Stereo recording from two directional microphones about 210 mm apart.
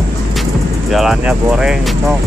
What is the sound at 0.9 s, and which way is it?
Speech, centre (ahead or behind).